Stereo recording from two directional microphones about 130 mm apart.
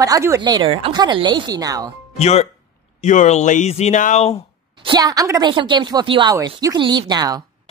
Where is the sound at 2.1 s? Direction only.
55° left (ahead or behind).